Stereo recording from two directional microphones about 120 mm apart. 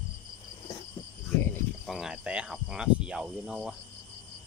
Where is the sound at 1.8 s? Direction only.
Centre (ahead or behind).